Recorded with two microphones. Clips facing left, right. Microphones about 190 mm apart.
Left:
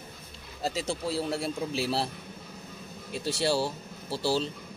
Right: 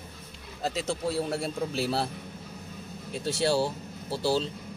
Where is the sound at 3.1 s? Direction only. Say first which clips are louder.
Right 1 dB; 5° left (ahead or behind).